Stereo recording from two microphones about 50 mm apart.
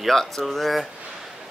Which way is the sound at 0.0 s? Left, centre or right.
Centre.